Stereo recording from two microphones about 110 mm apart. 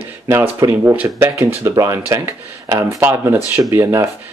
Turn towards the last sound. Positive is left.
turn(degrees=-25)  # may be behind; listen again after turning